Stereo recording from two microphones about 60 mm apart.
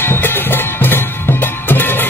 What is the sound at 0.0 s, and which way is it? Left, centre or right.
Music, left.